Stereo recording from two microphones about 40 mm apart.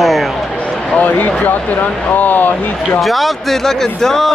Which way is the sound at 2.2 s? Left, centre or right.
Left.